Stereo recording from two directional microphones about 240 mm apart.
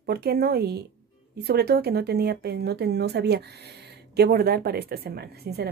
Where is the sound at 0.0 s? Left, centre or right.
Right.